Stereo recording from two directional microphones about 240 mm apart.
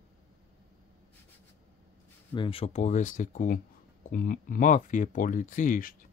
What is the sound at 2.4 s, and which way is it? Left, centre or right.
Speech, left.